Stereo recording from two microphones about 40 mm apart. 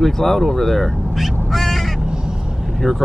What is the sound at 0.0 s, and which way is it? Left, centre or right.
Speech, centre.